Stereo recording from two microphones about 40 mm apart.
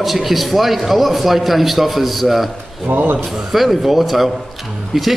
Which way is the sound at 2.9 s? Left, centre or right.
Right.